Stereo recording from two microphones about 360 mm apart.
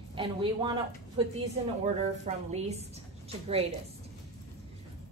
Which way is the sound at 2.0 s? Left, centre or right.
Centre.